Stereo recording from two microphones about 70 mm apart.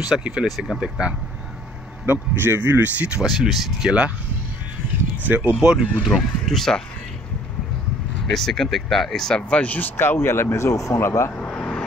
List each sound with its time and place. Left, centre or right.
0.0 s speech: centre
0.5 s speech: centre
2.0 s speech: right
3.3 s speech: centre
5.2 s speech: right
6.0 s speech: centre
8.3 s speech: centre
9.6 s speech: left
11.0 s speech: left
11.3 s vehicle: centre